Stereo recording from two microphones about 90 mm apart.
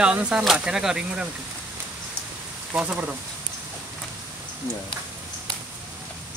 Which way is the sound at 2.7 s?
15° right (ahead or behind).